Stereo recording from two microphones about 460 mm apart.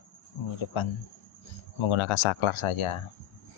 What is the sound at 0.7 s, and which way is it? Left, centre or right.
Speech, left.